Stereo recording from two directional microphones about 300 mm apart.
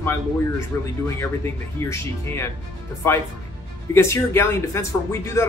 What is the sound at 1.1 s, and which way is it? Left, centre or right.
Speech, centre.